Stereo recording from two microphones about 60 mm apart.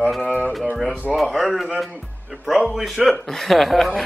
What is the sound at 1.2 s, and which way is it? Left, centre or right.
Speech, centre.